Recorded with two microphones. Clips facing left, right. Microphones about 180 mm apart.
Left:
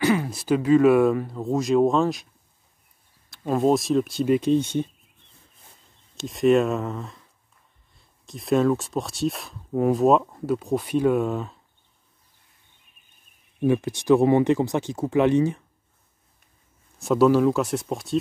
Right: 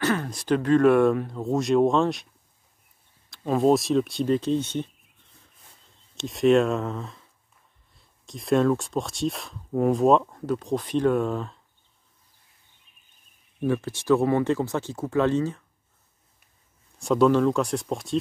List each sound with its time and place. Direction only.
0.0 s speech: 10° left (ahead or behind)
3.3 s speech: centre (ahead or behind)
6.1 s speech: centre (ahead or behind)
8.3 s speech: centre (ahead or behind)
13.7 s speech: 15° left (ahead or behind)
17.0 s speech: 5° left (ahead or behind)